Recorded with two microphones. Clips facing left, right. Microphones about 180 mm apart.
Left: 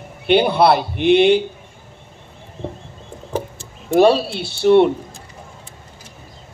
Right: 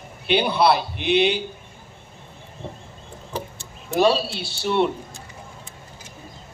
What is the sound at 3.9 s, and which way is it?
Speech, 55° left (ahead or behind).